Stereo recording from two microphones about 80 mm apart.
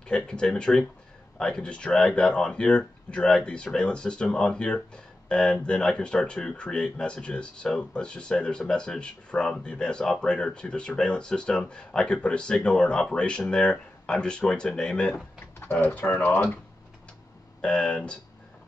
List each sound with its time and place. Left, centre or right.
0.0 s speech: centre
15.6 s speech: left
17.6 s speech: centre